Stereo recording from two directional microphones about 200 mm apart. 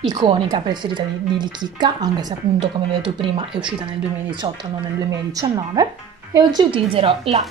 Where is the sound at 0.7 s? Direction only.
20° right (ahead or behind).